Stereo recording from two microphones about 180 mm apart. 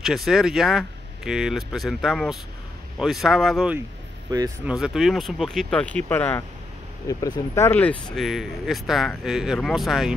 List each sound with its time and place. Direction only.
0.0 s speech: centre (ahead or behind)
7.1 s speech: 20° left (ahead or behind)
7.7 s speech: 5° left (ahead or behind)